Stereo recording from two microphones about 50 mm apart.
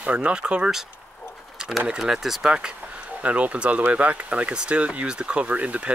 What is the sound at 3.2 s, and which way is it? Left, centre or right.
Speech, right.